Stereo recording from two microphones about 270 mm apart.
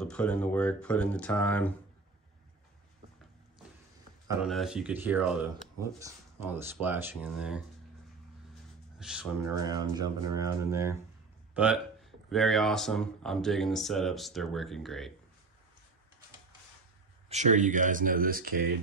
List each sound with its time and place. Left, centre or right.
0.0 s speech: centre
4.3 s speech: centre
9.0 s speech: centre
9.6 s speech: centre
17.3 s speech: right